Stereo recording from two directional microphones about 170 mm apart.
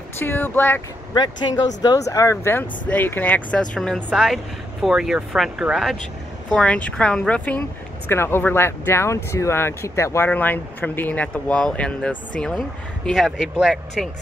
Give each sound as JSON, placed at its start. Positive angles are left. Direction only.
{"t": 0.2, "sound": "speech", "side_deg": 15}
{"t": 1.1, "sound": "speech", "side_deg": 25}